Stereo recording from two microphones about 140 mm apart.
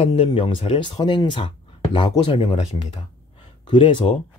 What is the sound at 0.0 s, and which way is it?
Speech, 40° left (ahead or behind).